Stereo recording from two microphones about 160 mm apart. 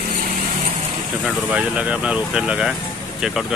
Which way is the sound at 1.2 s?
5° right (ahead or behind).